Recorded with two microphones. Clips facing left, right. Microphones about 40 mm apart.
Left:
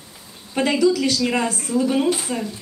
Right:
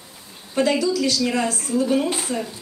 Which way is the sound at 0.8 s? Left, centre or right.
Left.